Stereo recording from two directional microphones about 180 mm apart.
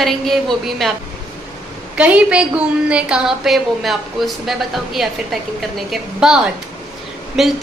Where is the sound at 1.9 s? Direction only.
5° right (ahead or behind).